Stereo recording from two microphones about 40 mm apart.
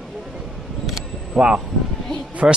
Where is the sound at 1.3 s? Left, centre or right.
Right.